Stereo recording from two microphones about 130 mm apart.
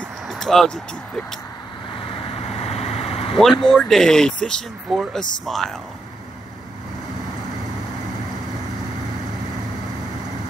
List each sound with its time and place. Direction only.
0.3 s vehicle: centre (ahead or behind)
2.0 s vehicle: 45° left (ahead or behind)
3.6 s speech: 5° left (ahead or behind)